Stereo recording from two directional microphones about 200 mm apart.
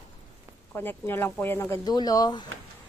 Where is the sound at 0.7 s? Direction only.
10° left (ahead or behind).